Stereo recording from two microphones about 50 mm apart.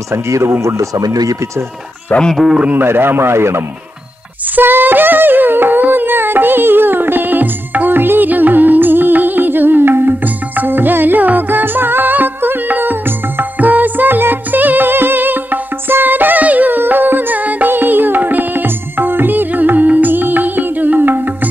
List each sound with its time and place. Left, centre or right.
0.1 s speech: right
0.6 s speech: right
2.3 s a man's voice: centre
2.8 s speech: right
4.6 s music: right
10.2 s music: right